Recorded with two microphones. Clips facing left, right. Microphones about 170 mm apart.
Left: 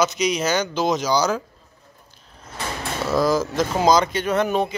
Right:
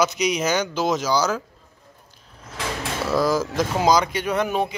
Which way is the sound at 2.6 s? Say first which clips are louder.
Right 1 dB; 90° right.